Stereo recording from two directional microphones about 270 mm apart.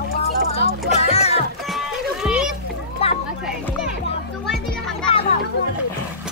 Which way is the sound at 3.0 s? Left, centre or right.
Left.